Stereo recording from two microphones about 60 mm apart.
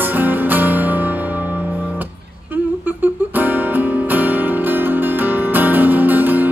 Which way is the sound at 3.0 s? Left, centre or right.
Right.